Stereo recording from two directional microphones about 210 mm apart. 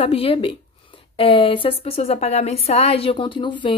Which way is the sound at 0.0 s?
25° left (ahead or behind).